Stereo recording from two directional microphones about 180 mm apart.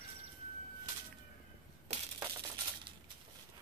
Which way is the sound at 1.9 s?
35° right (ahead or behind).